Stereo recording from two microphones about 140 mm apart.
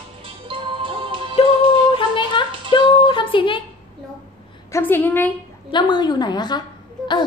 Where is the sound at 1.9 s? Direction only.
35° left (ahead or behind).